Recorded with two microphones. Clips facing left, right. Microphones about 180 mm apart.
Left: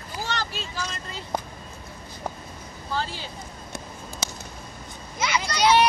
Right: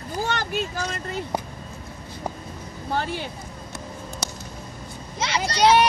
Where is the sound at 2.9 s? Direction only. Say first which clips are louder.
Right 4 dB; 60° right (ahead or behind).